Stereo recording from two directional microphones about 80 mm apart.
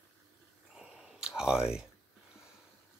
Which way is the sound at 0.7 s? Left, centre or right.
Centre.